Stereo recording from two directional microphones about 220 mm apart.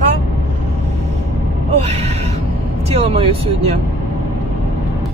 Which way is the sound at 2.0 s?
30° right (ahead or behind).